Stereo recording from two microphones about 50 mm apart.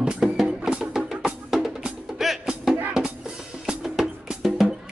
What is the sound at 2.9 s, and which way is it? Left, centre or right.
Music, centre.